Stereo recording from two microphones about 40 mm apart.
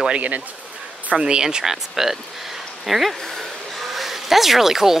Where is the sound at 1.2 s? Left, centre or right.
Right; by 3.1 s centre.